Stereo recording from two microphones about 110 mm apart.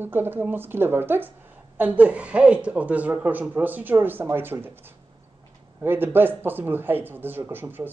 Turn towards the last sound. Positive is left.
turn(degrees=-20)  # may be behind; listen again after turning